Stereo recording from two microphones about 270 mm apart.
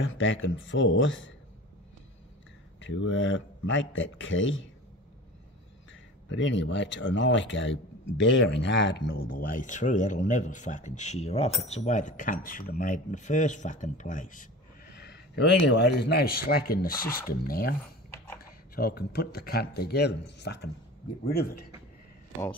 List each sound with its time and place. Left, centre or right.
0.0 s speech: left
2.8 s speech: left
6.2 s speech: left